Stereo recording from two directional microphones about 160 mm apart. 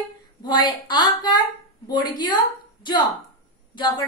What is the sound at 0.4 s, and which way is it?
A woman's voice, 25° left (ahead or behind).